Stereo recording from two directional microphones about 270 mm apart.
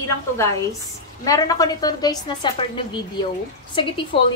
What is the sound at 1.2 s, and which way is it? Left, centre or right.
A woman's voice, centre.